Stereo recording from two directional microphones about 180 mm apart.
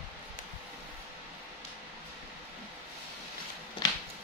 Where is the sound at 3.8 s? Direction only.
20° left (ahead or behind).